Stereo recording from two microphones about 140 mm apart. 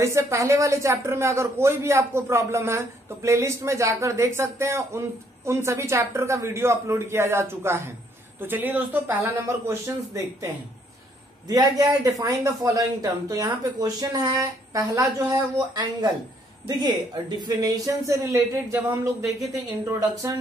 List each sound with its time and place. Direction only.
0.0 s speech: 20° right (ahead or behind)